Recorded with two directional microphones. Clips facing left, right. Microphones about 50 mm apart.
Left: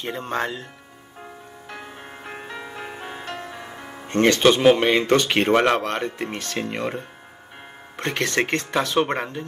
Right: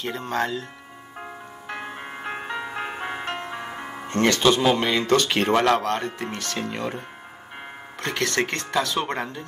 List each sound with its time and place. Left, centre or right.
0.2 s speech: left
1.7 s music: right
4.1 s speech: left
8.0 s speech: left